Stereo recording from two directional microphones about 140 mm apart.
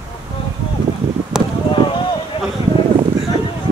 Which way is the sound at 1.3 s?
5° right (ahead or behind).